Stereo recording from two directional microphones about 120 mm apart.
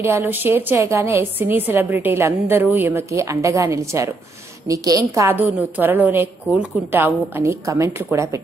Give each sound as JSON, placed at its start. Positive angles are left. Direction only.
{"t": 0.0, "sound": "a woman's voice", "side_deg": -20}